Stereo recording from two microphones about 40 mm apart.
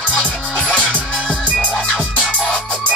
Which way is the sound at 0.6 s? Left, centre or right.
Left.